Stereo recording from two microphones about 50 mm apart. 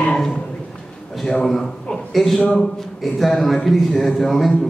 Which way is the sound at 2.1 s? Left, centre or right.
Centre.